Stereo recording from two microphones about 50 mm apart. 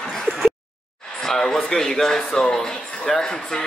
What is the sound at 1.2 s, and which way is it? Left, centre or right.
Speech, centre.